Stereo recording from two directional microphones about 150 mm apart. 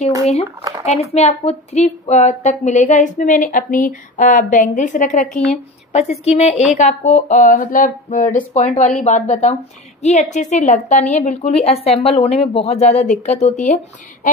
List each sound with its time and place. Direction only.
0.6 s a sound: 25° right (ahead or behind)
0.8 s a woman's voice: 45° left (ahead or behind)
5.9 s a woman's voice: 45° left (ahead or behind)